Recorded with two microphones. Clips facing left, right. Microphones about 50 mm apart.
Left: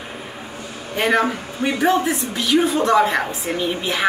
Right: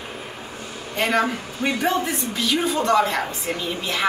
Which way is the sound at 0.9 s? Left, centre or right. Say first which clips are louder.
Left 3 dB; centre.